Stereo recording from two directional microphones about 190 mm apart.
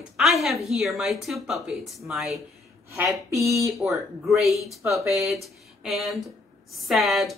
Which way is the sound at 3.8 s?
Centre (ahead or behind).